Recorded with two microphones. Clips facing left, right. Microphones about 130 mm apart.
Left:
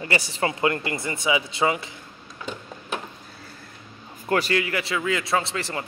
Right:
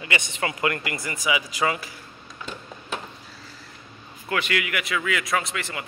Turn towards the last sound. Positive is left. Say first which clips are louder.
# left 2 dB
turn(degrees=35)  # may be behind; listen again after turning